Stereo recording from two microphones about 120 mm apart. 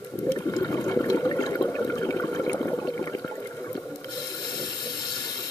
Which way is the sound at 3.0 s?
25° left (ahead or behind).